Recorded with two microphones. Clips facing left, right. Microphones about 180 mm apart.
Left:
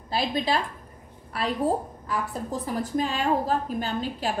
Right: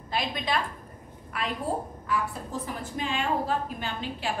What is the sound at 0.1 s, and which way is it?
A woman's voice, 35° left (ahead or behind).